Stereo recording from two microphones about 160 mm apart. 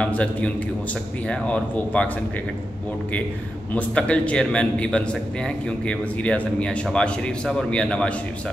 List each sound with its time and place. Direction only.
0.0 s a man's voice: 10° left (ahead or behind)
3.7 s a man's voice: 10° left (ahead or behind)